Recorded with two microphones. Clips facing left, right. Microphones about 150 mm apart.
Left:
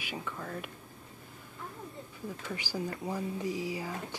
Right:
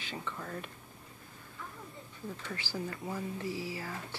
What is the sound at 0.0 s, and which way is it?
Speech, 10° left (ahead or behind).